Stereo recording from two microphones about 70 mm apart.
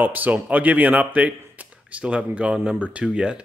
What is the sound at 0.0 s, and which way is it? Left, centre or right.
Speech, right.